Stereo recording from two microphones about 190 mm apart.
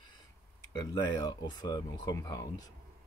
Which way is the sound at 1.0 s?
20° left (ahead or behind).